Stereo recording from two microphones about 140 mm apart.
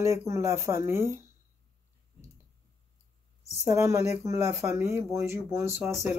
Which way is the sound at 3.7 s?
20° right (ahead or behind).